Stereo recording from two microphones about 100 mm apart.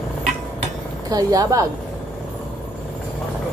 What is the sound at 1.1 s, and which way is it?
Speech, 40° right (ahead or behind).